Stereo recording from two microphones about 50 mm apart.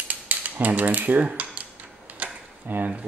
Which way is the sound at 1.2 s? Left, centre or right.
Right.